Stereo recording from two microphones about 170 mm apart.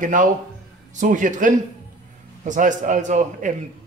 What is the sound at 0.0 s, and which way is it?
Speech, 50° right (ahead or behind).